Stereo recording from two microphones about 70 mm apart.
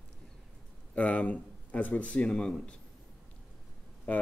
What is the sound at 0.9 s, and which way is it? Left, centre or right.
Speech, centre.